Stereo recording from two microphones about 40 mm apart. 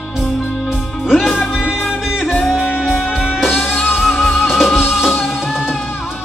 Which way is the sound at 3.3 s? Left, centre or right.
Centre.